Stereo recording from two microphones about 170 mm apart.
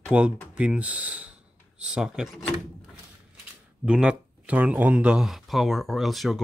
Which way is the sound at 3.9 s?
5° right (ahead or behind).